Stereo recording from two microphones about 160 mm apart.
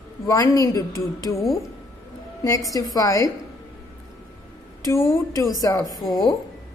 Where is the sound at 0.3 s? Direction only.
20° left (ahead or behind).